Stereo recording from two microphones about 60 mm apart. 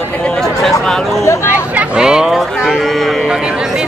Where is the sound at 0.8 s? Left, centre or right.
Centre.